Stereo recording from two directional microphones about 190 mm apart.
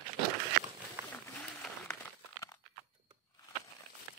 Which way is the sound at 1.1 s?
5° left (ahead or behind).